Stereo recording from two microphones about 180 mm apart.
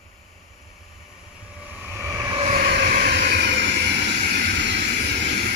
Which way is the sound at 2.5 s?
60° right (ahead or behind).